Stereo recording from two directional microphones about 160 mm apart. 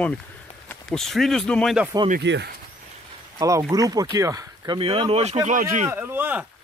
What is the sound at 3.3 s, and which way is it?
Speech, 20° right (ahead or behind).